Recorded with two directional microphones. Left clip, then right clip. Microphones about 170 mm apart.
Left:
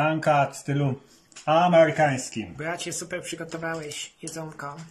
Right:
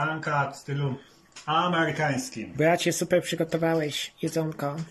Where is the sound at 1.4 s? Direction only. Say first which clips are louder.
Left 7 dB; 45° left (ahead or behind).